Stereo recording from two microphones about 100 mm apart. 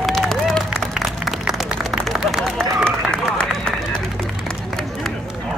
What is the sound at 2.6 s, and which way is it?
Run, 25° right (ahead or behind).